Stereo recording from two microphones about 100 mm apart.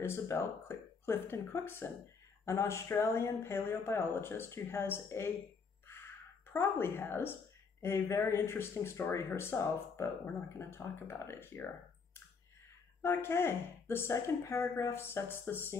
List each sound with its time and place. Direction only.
0.0 s speech: 25° left (ahead or behind)
5.9 s a sound: 25° left (ahead or behind)
7.8 s speech: 25° left (ahead or behind)
13.0 s speech: 25° left (ahead or behind)